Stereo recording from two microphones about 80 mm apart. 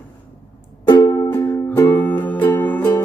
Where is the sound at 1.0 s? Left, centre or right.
Left.